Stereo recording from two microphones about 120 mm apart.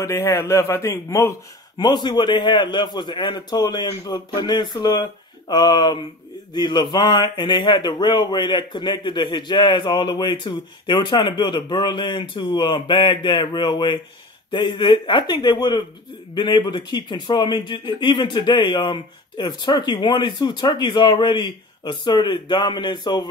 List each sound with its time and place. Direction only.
0.0 s a man's voice: 25° left (ahead or behind)
1.8 s speech: 35° left (ahead or behind)